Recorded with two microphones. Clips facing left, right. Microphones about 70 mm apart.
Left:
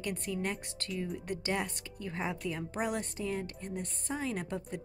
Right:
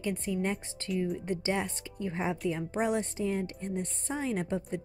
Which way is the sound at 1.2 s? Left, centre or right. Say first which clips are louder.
Right 3 dB; right.